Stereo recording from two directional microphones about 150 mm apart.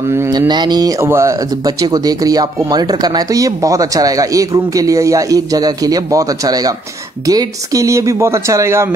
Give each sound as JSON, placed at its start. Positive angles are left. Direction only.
{"t": 0.1, "sound": "speech", "side_deg": -20}